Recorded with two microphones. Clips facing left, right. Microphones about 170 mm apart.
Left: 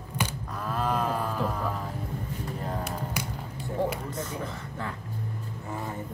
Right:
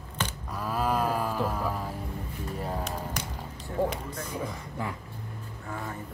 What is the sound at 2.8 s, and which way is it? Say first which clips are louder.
Music: left 1 dB; 10° left (ahead or behind).